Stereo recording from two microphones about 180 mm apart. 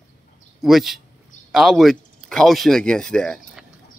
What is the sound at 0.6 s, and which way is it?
Speech, centre (ahead or behind).